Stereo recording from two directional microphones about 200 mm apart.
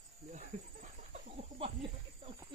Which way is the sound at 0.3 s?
40° right (ahead or behind).